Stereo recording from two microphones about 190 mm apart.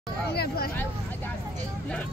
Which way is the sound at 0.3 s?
55° left (ahead or behind).